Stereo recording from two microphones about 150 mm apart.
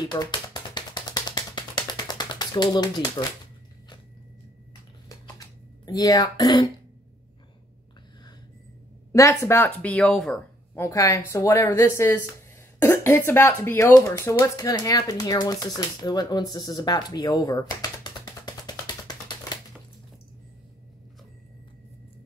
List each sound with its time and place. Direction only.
0.0 s a sound: 25° left (ahead or behind)
5.9 s speech: 25° left (ahead or behind)
9.1 s a woman's voice: 20° left (ahead or behind)
10.7 s speech: 15° left (ahead or behind)